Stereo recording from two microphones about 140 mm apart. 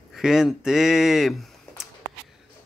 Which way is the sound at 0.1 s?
5° right (ahead or behind).